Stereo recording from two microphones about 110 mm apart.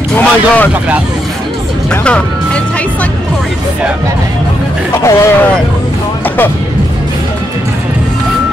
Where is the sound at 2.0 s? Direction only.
10° left (ahead or behind).